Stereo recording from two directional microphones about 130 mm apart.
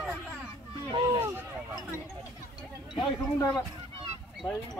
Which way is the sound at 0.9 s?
30° right (ahead or behind).